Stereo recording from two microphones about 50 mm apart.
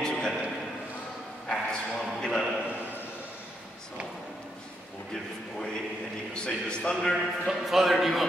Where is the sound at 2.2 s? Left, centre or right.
Centre.